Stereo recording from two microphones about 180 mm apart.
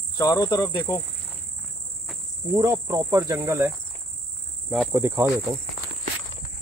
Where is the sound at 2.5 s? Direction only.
20° right (ahead or behind).